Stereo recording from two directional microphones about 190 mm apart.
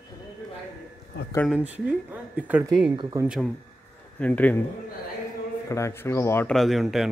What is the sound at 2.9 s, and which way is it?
Speech, 25° right (ahead or behind).